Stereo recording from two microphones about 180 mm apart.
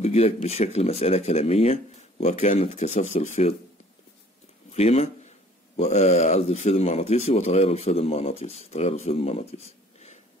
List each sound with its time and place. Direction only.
0.0 s speech: 35° left (ahead or behind)
4.7 s a man's voice: 35° left (ahead or behind)